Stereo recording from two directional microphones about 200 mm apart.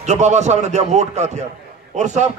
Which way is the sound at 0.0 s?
35° right (ahead or behind).